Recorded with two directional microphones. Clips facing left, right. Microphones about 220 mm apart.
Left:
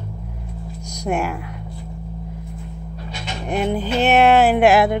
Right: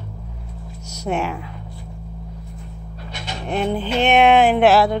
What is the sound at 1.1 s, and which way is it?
Speech, 10° left (ahead or behind).